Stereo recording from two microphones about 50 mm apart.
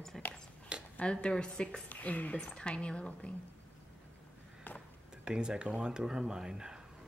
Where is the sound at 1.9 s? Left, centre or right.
Left.